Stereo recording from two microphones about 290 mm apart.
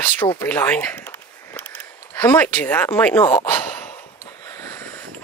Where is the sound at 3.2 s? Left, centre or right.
Centre.